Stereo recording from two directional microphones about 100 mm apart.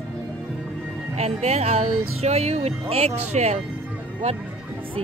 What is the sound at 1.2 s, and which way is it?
Music, 90° right.